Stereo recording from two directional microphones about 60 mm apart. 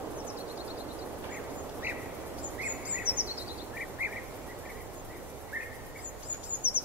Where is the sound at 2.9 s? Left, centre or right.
Right.